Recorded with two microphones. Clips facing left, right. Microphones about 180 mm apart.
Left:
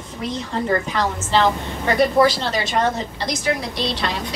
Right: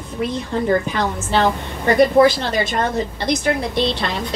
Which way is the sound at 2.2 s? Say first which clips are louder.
Right 3 dB; 55° right (ahead or behind).